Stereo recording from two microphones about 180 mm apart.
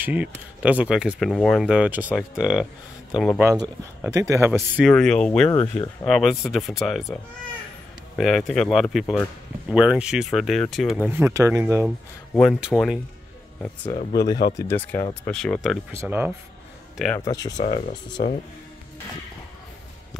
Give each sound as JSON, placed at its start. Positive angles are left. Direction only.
{"t": 0.0, "sound": "speech", "side_deg": -10}
{"t": 3.4, "sound": "speech", "side_deg": -20}
{"t": 4.6, "sound": "speech", "side_deg": 0}
{"t": 8.2, "sound": "speech", "side_deg": 0}
{"t": 12.4, "sound": "speech", "side_deg": 0}
{"t": 14.6, "sound": "speech", "side_deg": 10}
{"t": 15.9, "sound": "speech", "side_deg": -15}
{"t": 16.9, "sound": "speech", "side_deg": 0}
{"t": 17.2, "sound": "speech", "side_deg": 20}
{"t": 17.6, "sound": "speech", "side_deg": 40}